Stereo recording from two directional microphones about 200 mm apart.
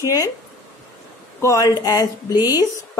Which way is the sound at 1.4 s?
15° left (ahead or behind).